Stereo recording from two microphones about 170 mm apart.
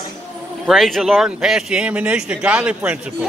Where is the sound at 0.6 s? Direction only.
Centre (ahead or behind).